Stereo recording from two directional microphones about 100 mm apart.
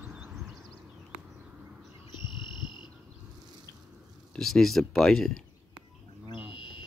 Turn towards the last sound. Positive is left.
turn(degrees=55)  # may be behind; listen again after turning